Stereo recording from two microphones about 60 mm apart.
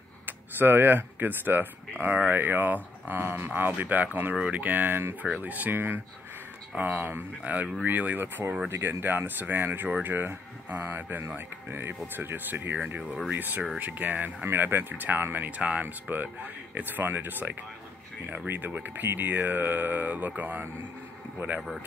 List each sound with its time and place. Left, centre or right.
0.3 s speech: right
21.5 s speech: centre